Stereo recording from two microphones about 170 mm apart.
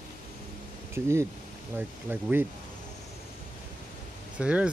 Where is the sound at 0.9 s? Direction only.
15° right (ahead or behind).